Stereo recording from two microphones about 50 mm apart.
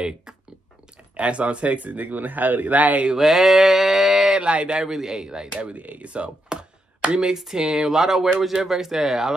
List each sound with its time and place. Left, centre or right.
1.1 s speech: right
3.2 s a sound: centre
4.4 s speech: right
4.7 s speech: centre
5.6 s speech: right; by 9.3 s centre